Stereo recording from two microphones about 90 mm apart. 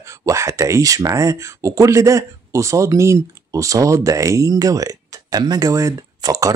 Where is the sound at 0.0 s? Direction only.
35° right (ahead or behind).